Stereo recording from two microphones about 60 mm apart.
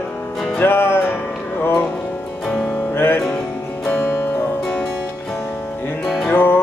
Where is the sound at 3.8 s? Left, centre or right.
Left.